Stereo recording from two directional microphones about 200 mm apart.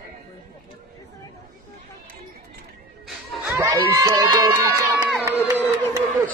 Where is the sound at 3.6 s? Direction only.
20° right (ahead or behind).